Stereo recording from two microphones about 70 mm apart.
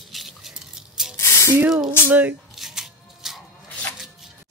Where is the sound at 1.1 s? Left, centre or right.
Left.